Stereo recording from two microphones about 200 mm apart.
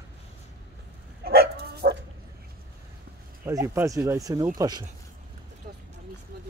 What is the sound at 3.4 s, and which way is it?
Speech, 10° right (ahead or behind).